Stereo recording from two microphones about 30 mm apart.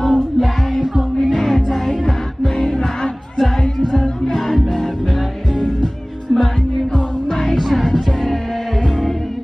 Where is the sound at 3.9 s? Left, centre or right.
Centre.